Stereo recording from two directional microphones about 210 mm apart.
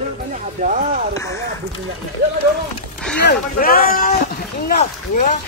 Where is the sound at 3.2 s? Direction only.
45° left (ahead or behind).